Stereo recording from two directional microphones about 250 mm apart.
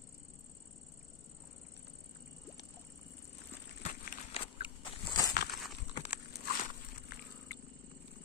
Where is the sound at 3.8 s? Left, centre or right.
Left.